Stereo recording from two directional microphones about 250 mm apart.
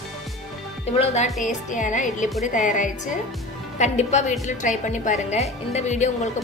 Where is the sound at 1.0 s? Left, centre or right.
Left.